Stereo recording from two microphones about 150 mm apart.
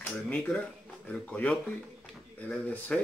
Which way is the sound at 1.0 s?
10° left (ahead or behind).